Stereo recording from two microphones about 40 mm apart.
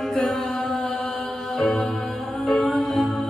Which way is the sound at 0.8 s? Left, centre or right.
Centre.